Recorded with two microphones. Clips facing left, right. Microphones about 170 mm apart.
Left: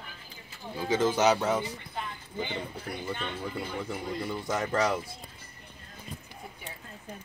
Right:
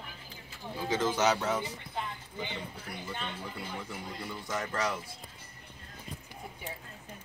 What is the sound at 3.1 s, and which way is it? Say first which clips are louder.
Speech: left 5 dB; centre (ahead or behind).